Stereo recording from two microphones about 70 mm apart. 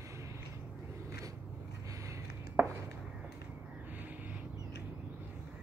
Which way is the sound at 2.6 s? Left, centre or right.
Right.